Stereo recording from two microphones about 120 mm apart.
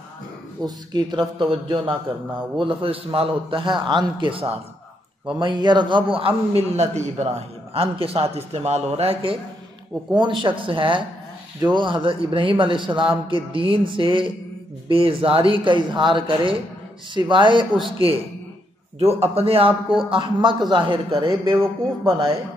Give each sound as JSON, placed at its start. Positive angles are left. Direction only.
{"t": 0.7, "sound": "a man's voice", "side_deg": -35}
{"t": 5.4, "sound": "a man's voice", "side_deg": -40}
{"t": 10.1, "sound": "a man's voice", "side_deg": -40}
{"t": 18.9, "sound": "a man's voice", "side_deg": -55}